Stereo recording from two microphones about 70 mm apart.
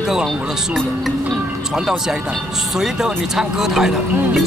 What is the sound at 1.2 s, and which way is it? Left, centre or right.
Music, centre.